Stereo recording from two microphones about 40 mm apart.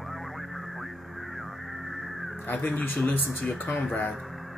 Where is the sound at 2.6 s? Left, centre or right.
Left.